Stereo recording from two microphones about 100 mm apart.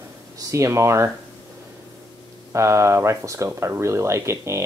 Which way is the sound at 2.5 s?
30° right (ahead or behind).